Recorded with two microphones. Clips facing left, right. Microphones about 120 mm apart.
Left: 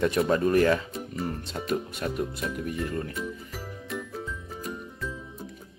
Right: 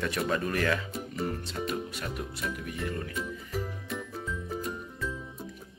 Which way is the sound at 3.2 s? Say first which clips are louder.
Right 1 dB; centre (ahead or behind).